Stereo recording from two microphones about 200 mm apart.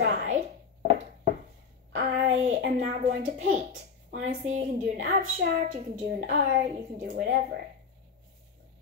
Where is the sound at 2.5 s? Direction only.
35° right (ahead or behind).